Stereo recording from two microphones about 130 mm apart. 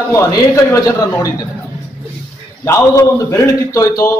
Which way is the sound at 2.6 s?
25° left (ahead or behind).